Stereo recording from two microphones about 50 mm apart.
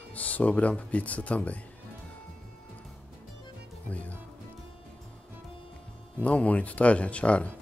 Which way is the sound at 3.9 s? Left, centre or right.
Left.